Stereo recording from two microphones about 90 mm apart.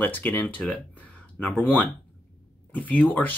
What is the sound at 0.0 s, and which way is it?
Speech, 20° left (ahead or behind).